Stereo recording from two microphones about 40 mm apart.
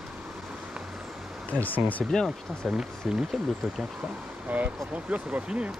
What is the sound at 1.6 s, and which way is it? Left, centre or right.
Speech, left.